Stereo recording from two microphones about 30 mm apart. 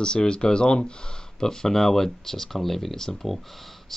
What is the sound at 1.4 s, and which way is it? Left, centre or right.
Speech, centre.